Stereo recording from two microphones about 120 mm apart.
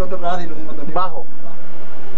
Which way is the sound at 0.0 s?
5° left (ahead or behind).